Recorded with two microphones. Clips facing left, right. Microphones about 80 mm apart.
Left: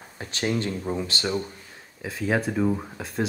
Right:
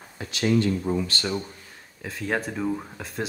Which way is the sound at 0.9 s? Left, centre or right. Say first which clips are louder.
Right 2 dB; left.